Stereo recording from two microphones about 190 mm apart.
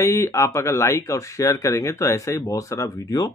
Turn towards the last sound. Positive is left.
turn(degrees=20)  # may be behind; listen again after turning